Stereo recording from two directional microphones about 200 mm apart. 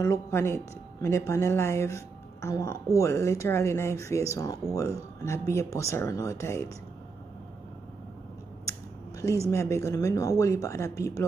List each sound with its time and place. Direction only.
0.0 s speech: 15° left (ahead or behind)
8.6 s a sound: 15° left (ahead or behind)
9.5 s speech: 15° left (ahead or behind)